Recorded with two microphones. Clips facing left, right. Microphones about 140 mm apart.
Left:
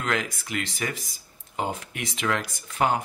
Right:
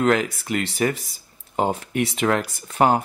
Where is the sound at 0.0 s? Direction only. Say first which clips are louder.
Right 9 dB; 40° right (ahead or behind).